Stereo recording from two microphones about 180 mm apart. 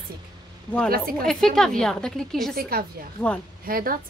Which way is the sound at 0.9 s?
55° right (ahead or behind).